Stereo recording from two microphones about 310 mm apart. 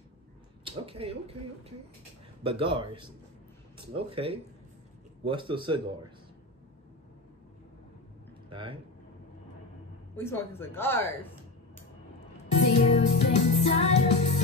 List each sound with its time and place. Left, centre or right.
0.7 s speech: centre
8.5 s speech: centre
10.1 s a woman's voice: centre
12.5 s music: centre